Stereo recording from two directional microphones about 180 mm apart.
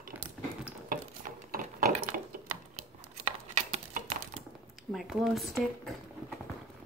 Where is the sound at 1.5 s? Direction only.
50° right (ahead or behind).